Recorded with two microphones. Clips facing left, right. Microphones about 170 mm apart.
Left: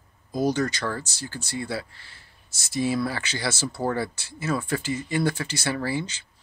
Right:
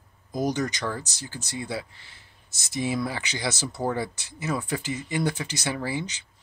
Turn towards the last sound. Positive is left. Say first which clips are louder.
# left 2 dB
turn(degrees=-15)  # may be behind; listen again after turning